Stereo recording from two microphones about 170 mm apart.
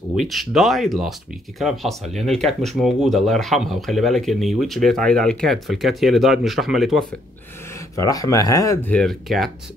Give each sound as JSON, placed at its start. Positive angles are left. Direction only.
{"t": 0.1, "sound": "speech", "side_deg": 0}
{"t": 7.9, "sound": "speech", "side_deg": 20}
{"t": 8.9, "sound": "speech", "side_deg": 0}